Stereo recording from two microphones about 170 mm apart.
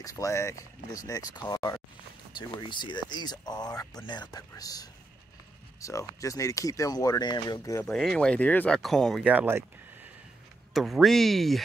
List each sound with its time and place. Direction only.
0.0 s speech: 20° left (ahead or behind)
7.8 s speech: centre (ahead or behind)
10.7 s speech: centre (ahead or behind)